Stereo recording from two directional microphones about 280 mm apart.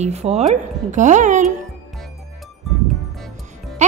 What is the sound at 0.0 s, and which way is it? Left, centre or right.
A woman's voice, right.